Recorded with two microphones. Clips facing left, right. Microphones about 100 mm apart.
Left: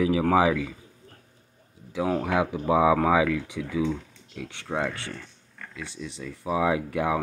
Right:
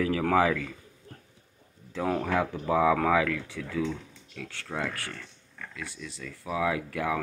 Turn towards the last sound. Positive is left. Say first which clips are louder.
# left 4 dB
turn(degrees=20)  # may be behind; listen again after turning